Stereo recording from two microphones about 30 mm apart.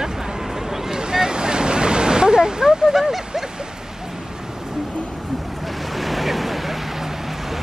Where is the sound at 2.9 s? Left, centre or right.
Centre.